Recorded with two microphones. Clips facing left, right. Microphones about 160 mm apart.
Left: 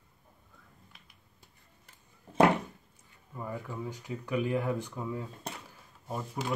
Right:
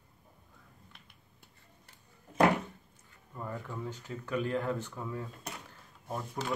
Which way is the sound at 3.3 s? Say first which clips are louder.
Left 2 dB; 10° left (ahead or behind).